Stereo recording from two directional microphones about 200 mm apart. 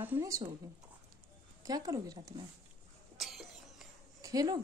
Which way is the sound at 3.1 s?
Centre (ahead or behind).